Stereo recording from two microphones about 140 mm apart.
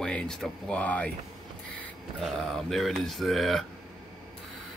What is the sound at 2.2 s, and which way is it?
Speech, centre (ahead or behind).